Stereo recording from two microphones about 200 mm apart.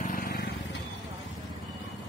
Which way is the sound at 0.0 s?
45° left (ahead or behind).